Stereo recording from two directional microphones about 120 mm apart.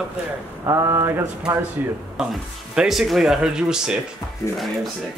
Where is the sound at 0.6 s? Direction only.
25° right (ahead or behind).